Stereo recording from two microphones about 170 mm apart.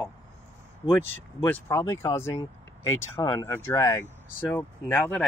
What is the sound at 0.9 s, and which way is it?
Speech, 10° left (ahead or behind).